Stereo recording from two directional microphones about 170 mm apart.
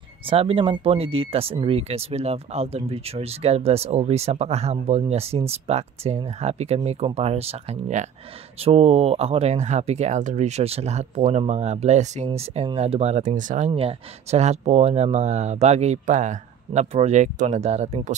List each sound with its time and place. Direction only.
0.3 s speech: 30° right (ahead or behind)